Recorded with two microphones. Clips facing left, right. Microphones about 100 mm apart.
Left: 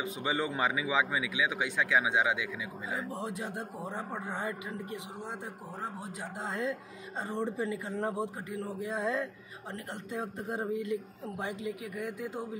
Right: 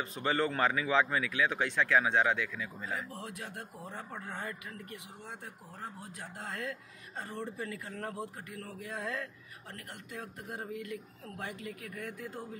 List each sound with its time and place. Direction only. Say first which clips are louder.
0.0 s speech: right 1 dB; 10° left (ahead or behind)
3.0 s a man's voice: left 6 dB; 25° left (ahead or behind)